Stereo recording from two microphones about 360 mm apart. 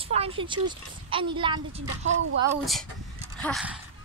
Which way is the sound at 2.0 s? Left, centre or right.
Right.